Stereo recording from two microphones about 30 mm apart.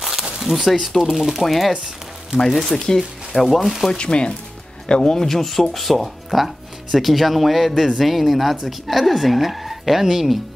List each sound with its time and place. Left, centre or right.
0.4 s speech: centre
1.4 s speech: centre
4.0 s speech: left
5.1 s speech: centre